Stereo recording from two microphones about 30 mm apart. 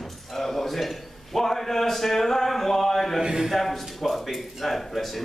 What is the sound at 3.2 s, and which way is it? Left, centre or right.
Speech, right.